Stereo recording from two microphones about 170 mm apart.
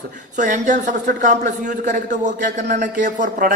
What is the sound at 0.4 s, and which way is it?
A man's voice, 50° right (ahead or behind).